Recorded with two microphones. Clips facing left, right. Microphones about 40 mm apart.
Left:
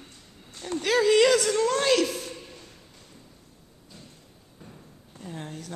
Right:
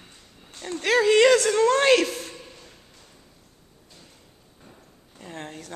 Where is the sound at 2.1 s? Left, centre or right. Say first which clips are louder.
Even; centre.